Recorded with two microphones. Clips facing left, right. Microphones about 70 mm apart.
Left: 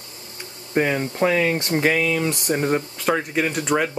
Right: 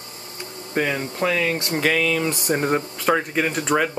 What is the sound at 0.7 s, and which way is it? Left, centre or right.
Speech, centre.